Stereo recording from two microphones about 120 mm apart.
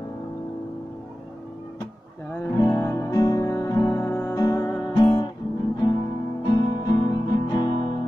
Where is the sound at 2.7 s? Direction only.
25° left (ahead or behind).